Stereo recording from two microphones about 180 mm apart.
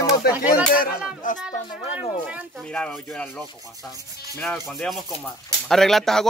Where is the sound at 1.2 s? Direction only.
45° left (ahead or behind).